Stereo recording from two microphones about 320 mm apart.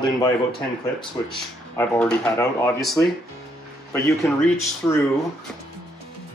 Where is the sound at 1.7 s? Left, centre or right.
Centre.